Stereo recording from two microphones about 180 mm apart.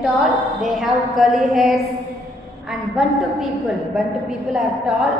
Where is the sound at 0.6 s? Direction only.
Centre (ahead or behind).